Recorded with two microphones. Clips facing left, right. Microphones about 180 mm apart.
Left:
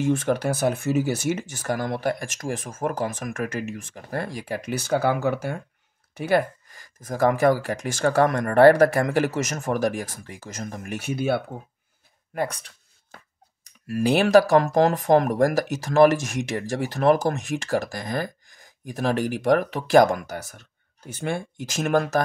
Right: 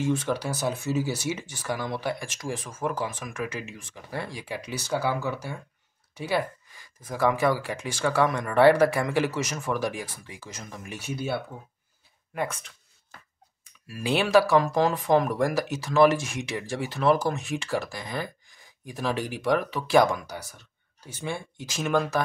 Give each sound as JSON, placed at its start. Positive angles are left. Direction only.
{"t": 0.0, "sound": "speech", "side_deg": 50}
{"t": 12.4, "sound": "speech", "side_deg": 35}
{"t": 13.7, "sound": "speech", "side_deg": 45}